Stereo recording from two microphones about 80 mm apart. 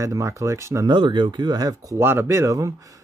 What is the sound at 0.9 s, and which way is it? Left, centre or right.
Speech, right.